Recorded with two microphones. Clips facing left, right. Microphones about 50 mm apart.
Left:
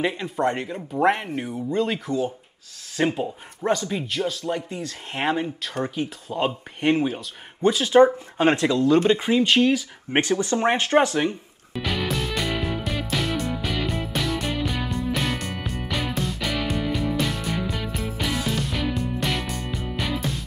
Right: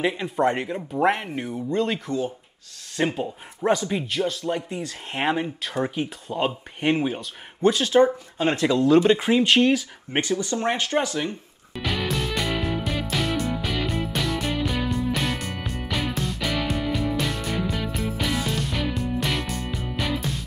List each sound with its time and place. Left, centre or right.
0.0 s speech: centre
3.6 s speech: centre
8.0 s speech: left
8.6 s speech: centre
10.1 s speech: left
11.7 s music: centre